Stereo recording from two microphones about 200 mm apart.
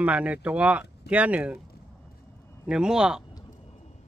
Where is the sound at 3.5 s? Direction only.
35° left (ahead or behind).